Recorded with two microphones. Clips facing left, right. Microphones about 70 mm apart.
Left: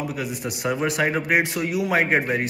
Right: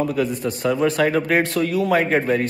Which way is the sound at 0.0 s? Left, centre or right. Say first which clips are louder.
Right 7 dB; centre.